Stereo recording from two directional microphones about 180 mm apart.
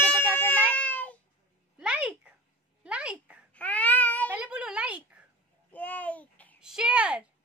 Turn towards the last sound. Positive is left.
turn(degrees=-5)  # may be behind; listen again after turning